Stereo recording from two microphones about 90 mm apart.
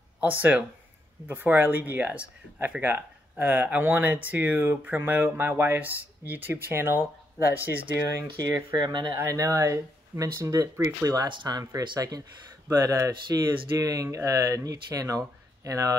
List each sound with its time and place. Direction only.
0.2 s speech: 20° right (ahead or behind)
8.2 s speech: 40° right (ahead or behind); by 9.2 s 60° right (ahead or behind)
9.2 s speech: 35° right (ahead or behind)
11.2 s speech: 55° right (ahead or behind)
12.6 s speech: 35° right (ahead or behind)